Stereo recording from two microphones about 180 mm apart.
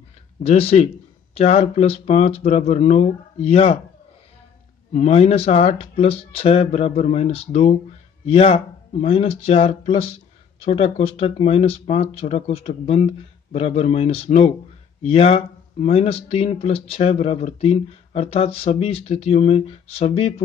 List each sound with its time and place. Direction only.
0.4 s speech: 35° left (ahead or behind)
4.9 s speech: 35° left (ahead or behind)